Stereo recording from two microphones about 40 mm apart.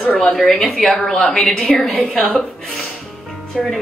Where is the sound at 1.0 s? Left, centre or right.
Left.